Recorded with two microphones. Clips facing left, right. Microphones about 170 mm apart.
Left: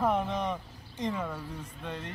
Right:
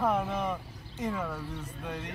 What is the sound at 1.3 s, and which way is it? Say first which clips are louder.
Speech: right 1 dB; 10° left (ahead or behind).